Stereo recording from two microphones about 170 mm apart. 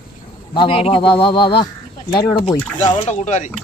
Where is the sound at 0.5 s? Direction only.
35° left (ahead or behind).